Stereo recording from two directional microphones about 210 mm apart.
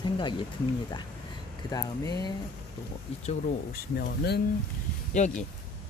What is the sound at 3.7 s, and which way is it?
Speech, 50° left (ahead or behind).